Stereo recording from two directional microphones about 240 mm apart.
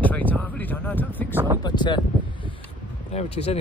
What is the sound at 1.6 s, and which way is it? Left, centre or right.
Speech, centre.